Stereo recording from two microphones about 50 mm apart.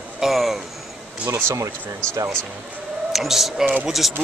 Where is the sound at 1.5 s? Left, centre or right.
Right.